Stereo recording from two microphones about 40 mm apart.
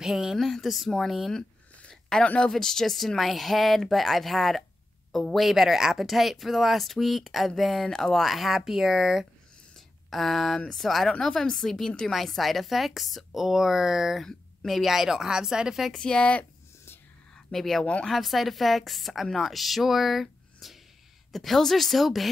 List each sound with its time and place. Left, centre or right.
0.0 s speech: centre
0.4 s speech: centre
2.1 s a woman's voice: centre
10.0 s speech: centre
11.1 s a woman's voice: centre
12.1 s speech: centre
15.9 s speech: centre
17.5 s a woman's voice: centre